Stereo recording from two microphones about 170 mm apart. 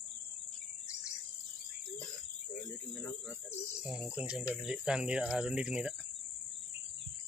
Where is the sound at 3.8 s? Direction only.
5° right (ahead or behind).